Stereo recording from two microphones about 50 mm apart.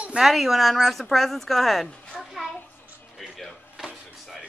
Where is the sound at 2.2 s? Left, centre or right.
Centre.